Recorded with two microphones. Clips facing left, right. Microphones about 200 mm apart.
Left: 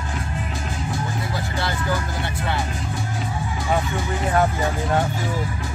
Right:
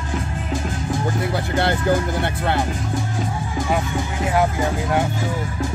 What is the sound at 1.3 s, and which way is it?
Speech, 60° right (ahead or behind).